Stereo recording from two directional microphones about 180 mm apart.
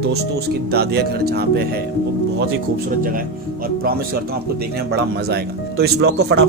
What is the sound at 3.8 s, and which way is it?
Speech, 55° right (ahead or behind).